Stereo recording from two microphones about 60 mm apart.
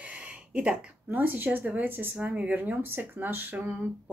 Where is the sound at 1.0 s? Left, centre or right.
Right.